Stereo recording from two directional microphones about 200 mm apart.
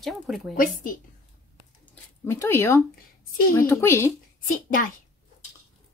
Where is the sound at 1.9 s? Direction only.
10° left (ahead or behind).